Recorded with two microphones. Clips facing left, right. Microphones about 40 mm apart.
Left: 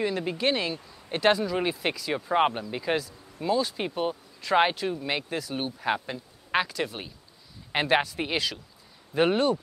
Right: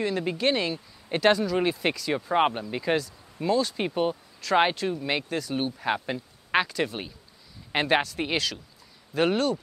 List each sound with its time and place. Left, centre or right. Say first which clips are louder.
0.0 s speech: right 1 dB; centre
6.0 s quack: right 4 dB; centre
6.6 s speech: right 2 dB; centre
9.1 s speech: left 1 dB; centre